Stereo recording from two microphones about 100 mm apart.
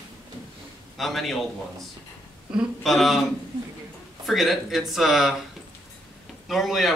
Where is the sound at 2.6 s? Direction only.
Centre (ahead or behind).